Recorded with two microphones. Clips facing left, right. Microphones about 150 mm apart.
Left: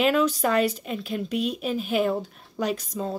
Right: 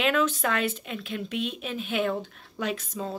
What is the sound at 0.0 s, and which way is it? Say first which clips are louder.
Speech: left 3 dB; centre (ahead or behind).